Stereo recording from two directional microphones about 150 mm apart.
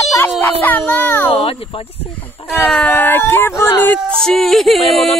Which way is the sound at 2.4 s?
35° left (ahead or behind).